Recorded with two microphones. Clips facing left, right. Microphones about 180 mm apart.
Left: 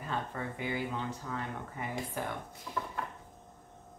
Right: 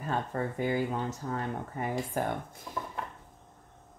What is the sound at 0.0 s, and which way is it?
Speech, 45° right (ahead or behind).